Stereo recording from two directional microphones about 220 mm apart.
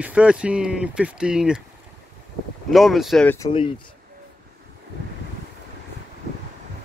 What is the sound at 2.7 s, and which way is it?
Speech, centre (ahead or behind).